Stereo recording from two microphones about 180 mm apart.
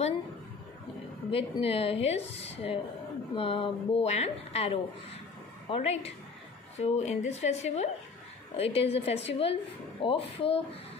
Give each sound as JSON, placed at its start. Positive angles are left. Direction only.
{"t": 1.3, "sound": "a woman's voice", "side_deg": 30}